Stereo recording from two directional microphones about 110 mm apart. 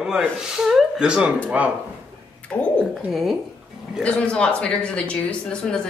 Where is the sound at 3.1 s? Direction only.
5° right (ahead or behind).